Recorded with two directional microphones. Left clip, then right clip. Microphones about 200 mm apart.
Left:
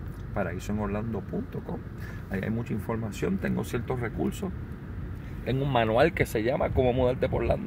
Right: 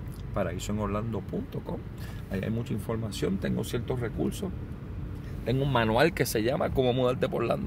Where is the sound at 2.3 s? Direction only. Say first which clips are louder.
Left 1 dB; 15° right (ahead or behind).